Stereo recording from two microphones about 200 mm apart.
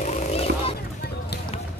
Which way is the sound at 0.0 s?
30° left (ahead or behind).